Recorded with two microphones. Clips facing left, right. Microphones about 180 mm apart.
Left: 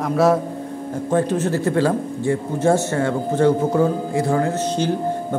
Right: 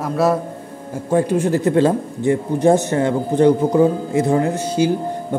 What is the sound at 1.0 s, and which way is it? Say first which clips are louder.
Speech: right 3 dB; 10° right (ahead or behind).